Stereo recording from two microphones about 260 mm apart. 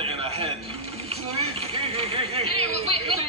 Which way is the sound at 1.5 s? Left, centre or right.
Right.